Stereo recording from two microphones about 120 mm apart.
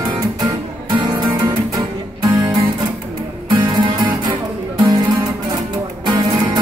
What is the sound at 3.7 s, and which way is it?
Music, 40° right (ahead or behind).